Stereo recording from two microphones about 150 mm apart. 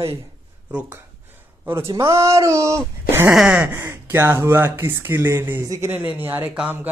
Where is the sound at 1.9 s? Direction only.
20° right (ahead or behind).